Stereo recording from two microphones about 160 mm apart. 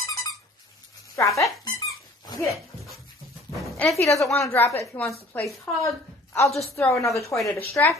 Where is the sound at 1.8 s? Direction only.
20° left (ahead or behind).